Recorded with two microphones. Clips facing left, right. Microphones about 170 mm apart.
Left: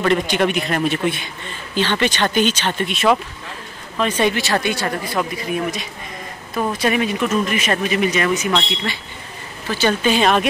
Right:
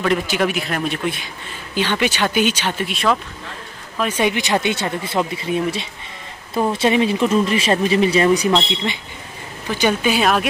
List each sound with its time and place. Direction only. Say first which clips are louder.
0.0 s a man's voice: left 1 dB; 5° right (ahead or behind)
4.0 s speech: left 1 dB; 10° right (ahead or behind); by 8.5 s 30° right (ahead or behind)
8.5 s speech: right 2 dB; 20° right (ahead or behind)